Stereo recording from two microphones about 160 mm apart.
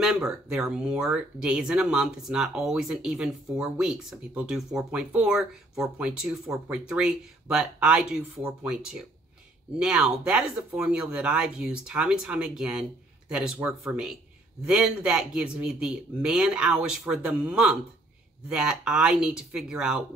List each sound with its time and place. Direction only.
0.0 s speech: 5° right (ahead or behind)